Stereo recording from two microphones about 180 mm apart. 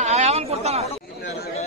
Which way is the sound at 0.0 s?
40° right (ahead or behind).